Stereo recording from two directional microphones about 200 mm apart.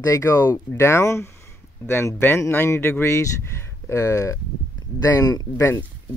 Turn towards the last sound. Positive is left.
turn(degrees=15)  # may be behind; listen again after turning